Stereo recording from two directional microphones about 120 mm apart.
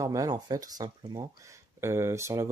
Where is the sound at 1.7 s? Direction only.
20° right (ahead or behind).